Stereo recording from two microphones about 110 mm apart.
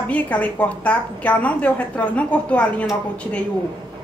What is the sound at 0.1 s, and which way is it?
A woman's voice, 15° left (ahead or behind).